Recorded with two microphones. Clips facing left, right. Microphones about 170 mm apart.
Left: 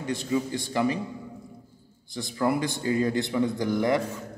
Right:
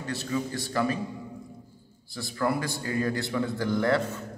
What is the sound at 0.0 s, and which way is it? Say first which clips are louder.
Speech: left 3 dB; 15° left (ahead or behind).